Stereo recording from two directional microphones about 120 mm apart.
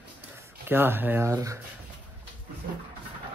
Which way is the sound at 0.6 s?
15° right (ahead or behind).